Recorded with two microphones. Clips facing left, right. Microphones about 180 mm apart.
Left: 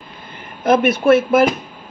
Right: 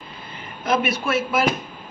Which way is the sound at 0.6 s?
50° left (ahead or behind).